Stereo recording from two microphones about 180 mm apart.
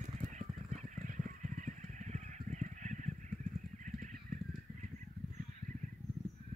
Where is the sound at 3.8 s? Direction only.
45° right (ahead or behind).